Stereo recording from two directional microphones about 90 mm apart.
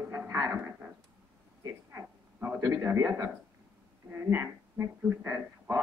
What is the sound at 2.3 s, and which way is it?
Speech, 20° right (ahead or behind).